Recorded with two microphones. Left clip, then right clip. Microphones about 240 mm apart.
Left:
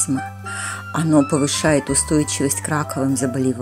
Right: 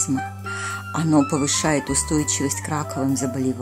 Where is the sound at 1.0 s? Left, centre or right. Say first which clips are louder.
Left 3 dB; centre.